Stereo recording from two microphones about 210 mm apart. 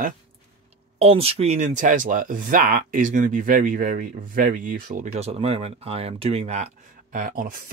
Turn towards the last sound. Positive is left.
turn(degrees=-40)  # may be behind; listen again after turning